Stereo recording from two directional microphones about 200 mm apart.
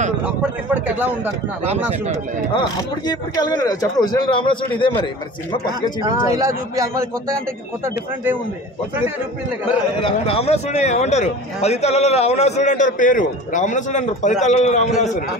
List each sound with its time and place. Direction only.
0.7 s speech: 10° right (ahead or behind)
2.5 s speech: 20° left (ahead or behind)
6.0 s speech: 15° right (ahead or behind)
10.0 s a man's voice: 30° left (ahead or behind)